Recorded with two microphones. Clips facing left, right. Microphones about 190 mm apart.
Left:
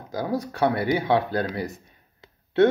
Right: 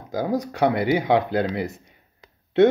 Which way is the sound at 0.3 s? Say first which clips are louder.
Right 2 dB; 15° right (ahead or behind).